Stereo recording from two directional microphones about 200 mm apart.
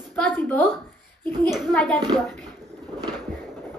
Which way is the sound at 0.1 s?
10° left (ahead or behind).